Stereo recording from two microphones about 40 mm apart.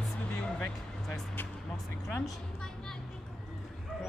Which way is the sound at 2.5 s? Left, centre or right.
Centre.